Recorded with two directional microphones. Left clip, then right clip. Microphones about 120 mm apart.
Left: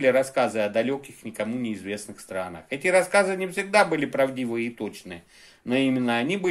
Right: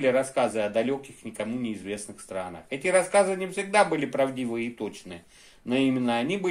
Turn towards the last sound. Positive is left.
turn(degrees=30)  # may be behind; listen again after turning